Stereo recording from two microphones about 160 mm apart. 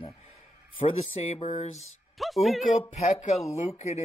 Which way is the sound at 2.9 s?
50° left (ahead or behind).